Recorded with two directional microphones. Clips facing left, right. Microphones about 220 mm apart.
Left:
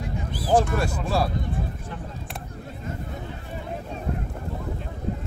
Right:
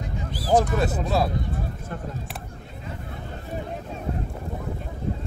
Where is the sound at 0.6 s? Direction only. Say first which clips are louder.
Right 2 dB; 20° right (ahead or behind).